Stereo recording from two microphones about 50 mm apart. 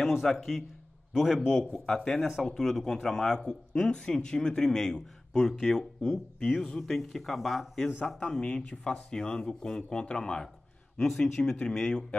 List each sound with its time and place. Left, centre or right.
0.0 s a man's voice: centre
8.4 s speech: centre
8.6 s speech: left
9.1 s speech: centre